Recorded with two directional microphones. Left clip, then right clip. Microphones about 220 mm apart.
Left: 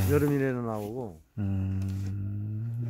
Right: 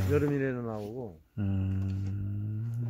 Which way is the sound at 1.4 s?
Centre (ahead or behind).